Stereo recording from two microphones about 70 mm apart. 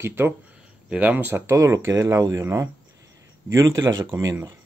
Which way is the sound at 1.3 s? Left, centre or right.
Right.